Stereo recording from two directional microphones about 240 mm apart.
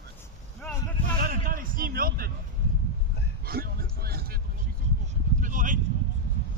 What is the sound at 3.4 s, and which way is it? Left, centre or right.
Speech, right.